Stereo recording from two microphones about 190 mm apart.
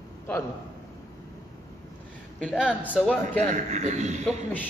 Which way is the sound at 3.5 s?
40° right (ahead or behind).